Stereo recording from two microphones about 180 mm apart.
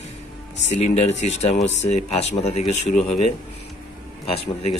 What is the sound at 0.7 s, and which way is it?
Speech, 40° left (ahead or behind).